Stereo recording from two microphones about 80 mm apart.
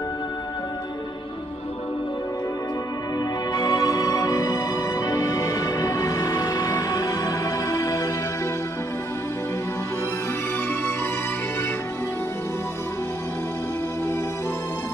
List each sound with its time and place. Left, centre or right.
3.2 s music: left